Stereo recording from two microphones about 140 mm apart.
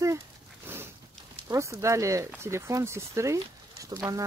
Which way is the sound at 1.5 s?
20° right (ahead or behind).